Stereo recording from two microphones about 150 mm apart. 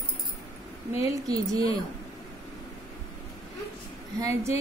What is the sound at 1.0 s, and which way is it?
Speech, 25° right (ahead or behind).